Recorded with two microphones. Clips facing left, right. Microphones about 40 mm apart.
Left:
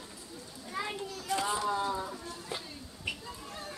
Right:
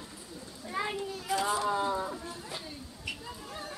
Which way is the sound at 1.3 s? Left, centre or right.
Centre.